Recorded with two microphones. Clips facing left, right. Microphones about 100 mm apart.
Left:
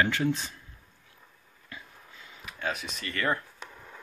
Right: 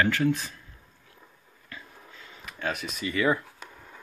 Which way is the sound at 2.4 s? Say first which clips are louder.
Right 2 dB; centre (ahead or behind).